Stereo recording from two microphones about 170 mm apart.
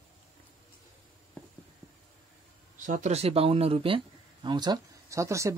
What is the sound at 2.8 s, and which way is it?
Speech, 45° right (ahead or behind).